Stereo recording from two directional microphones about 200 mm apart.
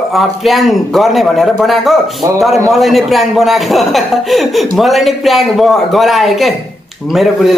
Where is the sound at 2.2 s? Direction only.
15° right (ahead or behind).